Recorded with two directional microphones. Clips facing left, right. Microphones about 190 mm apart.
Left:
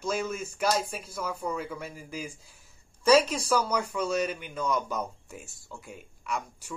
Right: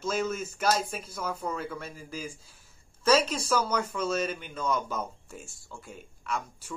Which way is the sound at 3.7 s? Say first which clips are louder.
Left 1 dB; 15° left (ahead or behind).